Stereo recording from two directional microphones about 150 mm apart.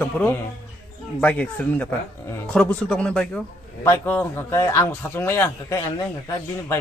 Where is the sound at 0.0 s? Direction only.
15° left (ahead or behind).